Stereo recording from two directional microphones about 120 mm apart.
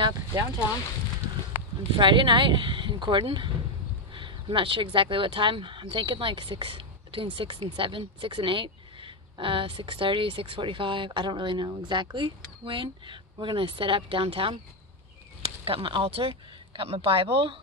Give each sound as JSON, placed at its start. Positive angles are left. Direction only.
{"t": 0.0, "sound": "a sound", "side_deg": -35}
{"t": 1.9, "sound": "speech", "side_deg": -45}
{"t": 15.6, "sound": "speech", "side_deg": -45}